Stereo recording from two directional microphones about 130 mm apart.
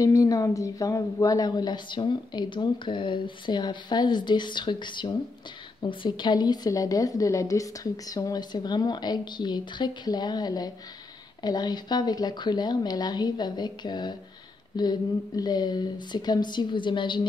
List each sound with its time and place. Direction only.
0.0 s a woman's voice: 25° left (ahead or behind)